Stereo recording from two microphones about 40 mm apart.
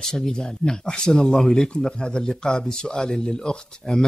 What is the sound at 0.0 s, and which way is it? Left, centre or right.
Speech, centre.